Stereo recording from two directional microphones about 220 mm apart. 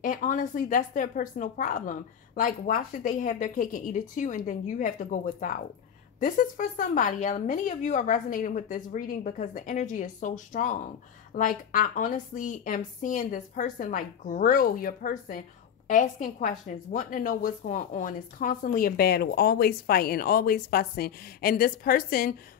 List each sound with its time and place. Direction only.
0.0 s a woman's voice: 35° left (ahead or behind)